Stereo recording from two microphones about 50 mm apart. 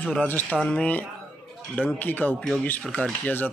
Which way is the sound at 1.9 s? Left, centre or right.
Left.